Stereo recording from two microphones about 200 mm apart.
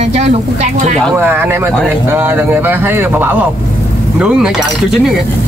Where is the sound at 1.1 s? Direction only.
10° right (ahead or behind).